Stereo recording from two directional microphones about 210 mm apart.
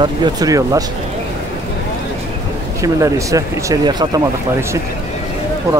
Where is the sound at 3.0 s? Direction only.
15° right (ahead or behind).